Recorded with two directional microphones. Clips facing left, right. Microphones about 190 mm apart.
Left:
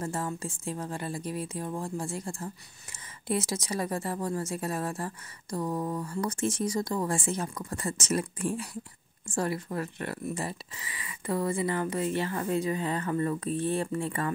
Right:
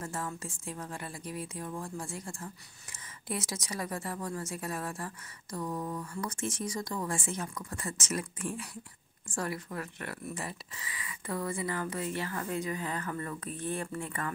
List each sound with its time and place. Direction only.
0.0 s speech: 30° left (ahead or behind)